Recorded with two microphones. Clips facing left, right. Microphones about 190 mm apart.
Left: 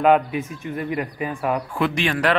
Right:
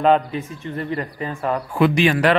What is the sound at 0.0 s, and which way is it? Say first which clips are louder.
Speech: even; 10° left (ahead or behind).